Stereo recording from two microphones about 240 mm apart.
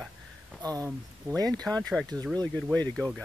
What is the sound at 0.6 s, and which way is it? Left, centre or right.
Speech, centre.